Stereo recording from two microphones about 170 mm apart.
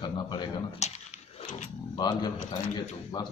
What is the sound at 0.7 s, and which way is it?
Speech, 40° left (ahead or behind).